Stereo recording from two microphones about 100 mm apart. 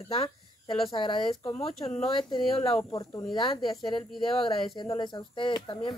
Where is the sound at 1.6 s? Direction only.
90° left.